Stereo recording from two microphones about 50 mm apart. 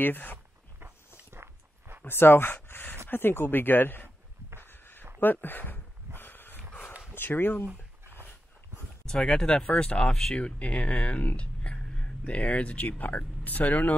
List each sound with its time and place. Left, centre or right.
0.0 s speech: left
1.3 s walk: right
2.0 s speech: left
4.6 s a sound: left
7.2 s speech: left
9.0 s speech: centre
11.1 s a sound: left
12.0 s speech: left